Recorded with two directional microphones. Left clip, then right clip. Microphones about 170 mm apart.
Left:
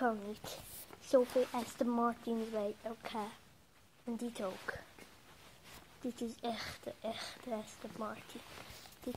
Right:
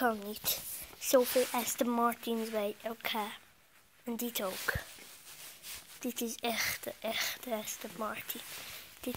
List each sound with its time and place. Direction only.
0.0 s speech: 25° right (ahead or behind)
1.9 s speech: 35° right (ahead or behind)
6.0 s speech: 20° right (ahead or behind)